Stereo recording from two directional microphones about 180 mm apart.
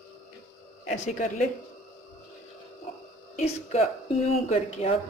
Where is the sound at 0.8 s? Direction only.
45° left (ahead or behind).